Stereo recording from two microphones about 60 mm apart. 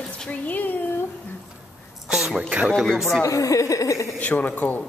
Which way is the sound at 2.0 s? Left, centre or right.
Centre.